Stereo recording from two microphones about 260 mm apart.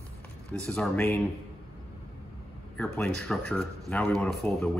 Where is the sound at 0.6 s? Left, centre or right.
Centre.